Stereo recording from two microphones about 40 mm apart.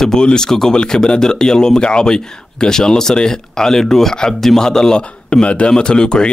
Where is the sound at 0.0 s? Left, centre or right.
Centre.